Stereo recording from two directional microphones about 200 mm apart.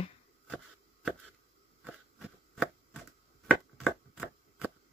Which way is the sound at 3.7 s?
Centre (ahead or behind).